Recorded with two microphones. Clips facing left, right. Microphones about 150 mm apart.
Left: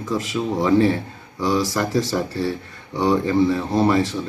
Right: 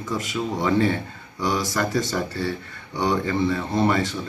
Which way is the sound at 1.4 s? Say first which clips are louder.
Left 4 dB; 15° right (ahead or behind).